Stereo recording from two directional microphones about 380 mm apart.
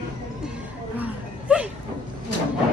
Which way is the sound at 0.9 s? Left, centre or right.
Centre.